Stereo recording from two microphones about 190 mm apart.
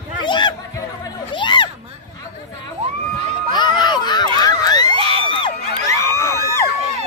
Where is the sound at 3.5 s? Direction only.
25° left (ahead or behind).